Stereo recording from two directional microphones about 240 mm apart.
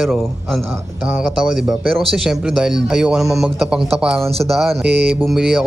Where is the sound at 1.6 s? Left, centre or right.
Centre.